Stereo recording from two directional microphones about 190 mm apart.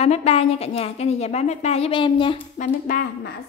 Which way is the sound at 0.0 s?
30° left (ahead or behind).